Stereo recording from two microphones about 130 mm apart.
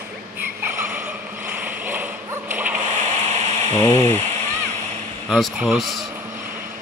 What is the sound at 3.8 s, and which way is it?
Speech, 25° left (ahead or behind).